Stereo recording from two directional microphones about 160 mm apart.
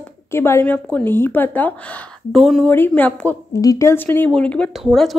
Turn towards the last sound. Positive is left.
turn(degrees=0)  # may be behind; listen again after turning